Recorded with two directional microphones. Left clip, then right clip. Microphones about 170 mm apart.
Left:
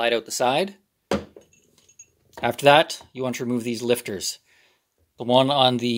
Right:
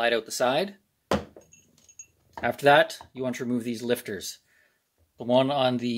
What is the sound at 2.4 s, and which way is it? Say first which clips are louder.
Speech: left 3 dB; 35° left (ahead or behind).